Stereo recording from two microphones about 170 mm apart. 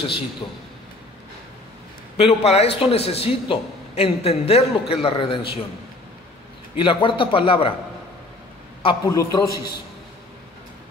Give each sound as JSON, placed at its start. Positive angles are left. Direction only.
{"t": 2.1, "sound": "a man's voice", "side_deg": 35}
{"t": 6.8, "sound": "a man's voice", "side_deg": 30}
{"t": 8.8, "sound": "a man's voice", "side_deg": 20}